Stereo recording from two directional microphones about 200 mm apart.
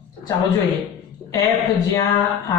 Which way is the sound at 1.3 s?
15° left (ahead or behind).